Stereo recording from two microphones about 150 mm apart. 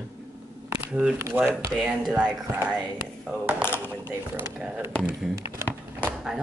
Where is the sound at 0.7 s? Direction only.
5° right (ahead or behind).